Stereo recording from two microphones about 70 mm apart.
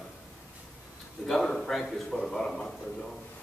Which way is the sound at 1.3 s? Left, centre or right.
Centre.